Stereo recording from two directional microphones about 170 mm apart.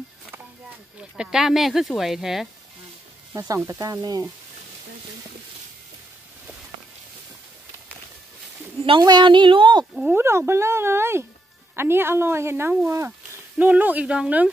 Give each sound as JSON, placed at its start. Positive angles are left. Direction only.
{"t": 1.1, "sound": "speech", "side_deg": -5}
{"t": 3.3, "sound": "a woman's voice", "side_deg": -20}
{"t": 8.8, "sound": "a woman's voice", "side_deg": -25}
{"t": 9.9, "sound": "speech", "side_deg": -5}
{"t": 10.2, "sound": "speech", "side_deg": -15}